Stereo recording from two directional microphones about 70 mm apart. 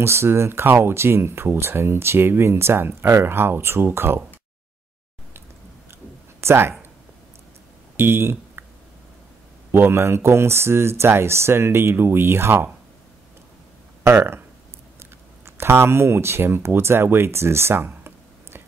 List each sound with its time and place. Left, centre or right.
0.0 s speech: right
6.4 s speech: right
8.0 s speech: right
9.7 s speech: right
14.0 s speech: right